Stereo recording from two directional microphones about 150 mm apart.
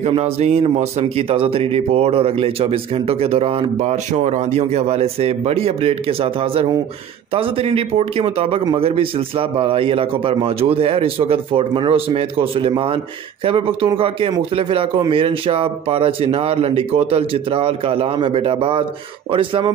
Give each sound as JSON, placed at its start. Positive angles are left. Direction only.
{"t": 0.0, "sound": "speech", "side_deg": -45}